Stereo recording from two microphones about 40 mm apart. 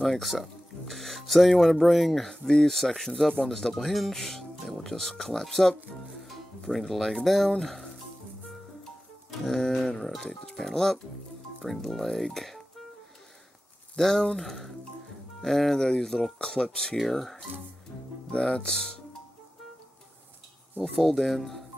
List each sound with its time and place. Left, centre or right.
0.0 s speech: centre
9.4 s speech: centre
10.2 s speech: centre
13.9 s speech: centre
16.9 s speech: centre
18.3 s speech: left
21.0 s speech: centre